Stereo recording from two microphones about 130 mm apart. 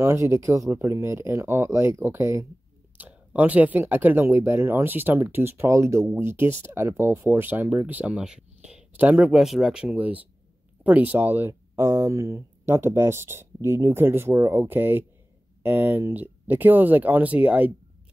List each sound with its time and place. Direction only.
0.0 s speech: 25° right (ahead or behind)